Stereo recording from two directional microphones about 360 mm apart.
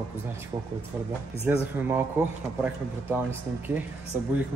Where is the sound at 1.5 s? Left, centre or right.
Centre.